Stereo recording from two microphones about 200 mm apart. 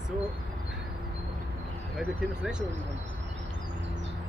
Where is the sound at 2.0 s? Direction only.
5° right (ahead or behind).